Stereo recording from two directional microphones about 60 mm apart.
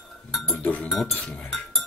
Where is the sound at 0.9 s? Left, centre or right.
Centre.